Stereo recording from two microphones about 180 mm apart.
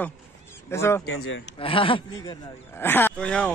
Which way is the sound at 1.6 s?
30° left (ahead or behind).